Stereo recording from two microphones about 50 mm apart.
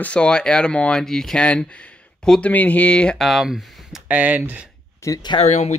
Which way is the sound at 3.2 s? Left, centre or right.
Centre.